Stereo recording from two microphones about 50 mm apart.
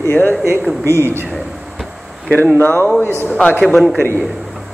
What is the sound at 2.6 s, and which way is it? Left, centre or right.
Speech, left.